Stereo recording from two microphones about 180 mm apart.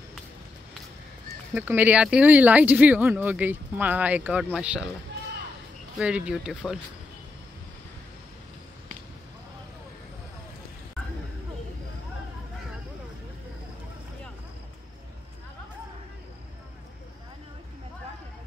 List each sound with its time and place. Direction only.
1.5 s speech: 10° right (ahead or behind)
5.9 s speech: 5° right (ahead or behind)